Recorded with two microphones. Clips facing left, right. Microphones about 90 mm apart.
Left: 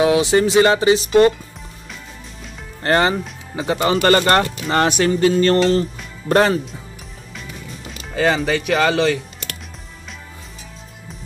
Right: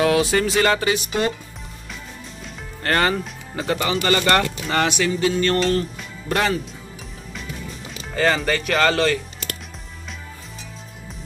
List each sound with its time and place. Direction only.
0.0 s speech: 20° left (ahead or behind)
2.8 s speech: 25° left (ahead or behind)
3.9 s speech: 45° left (ahead or behind); by 5.9 s 30° left (ahead or behind)
6.2 s speech: 40° left (ahead or behind)
8.1 s speech: 10° left (ahead or behind)